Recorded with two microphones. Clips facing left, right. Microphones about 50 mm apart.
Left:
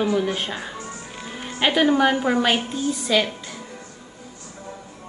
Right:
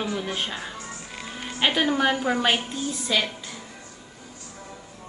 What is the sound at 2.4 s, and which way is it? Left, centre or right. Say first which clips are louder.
Speech: left 3 dB; centre.